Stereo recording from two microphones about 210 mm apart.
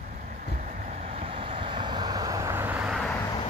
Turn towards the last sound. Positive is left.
turn(degrees=0)  # may be behind; listen again after turning